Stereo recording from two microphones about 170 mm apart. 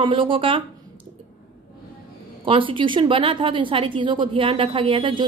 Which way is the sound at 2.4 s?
30° right (ahead or behind).